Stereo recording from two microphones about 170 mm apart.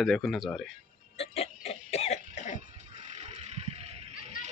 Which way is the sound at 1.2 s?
35° left (ahead or behind).